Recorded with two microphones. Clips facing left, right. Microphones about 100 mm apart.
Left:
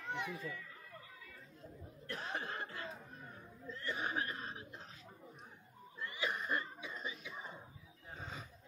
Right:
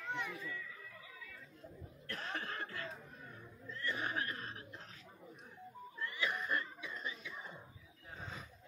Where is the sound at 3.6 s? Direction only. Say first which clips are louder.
Even; 20° left (ahead or behind).